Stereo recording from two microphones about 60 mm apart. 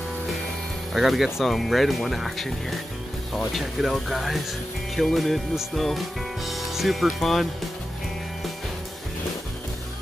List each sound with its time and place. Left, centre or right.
0.9 s speech: centre